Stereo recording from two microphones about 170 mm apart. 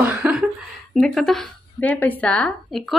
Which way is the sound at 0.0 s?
5° right (ahead or behind).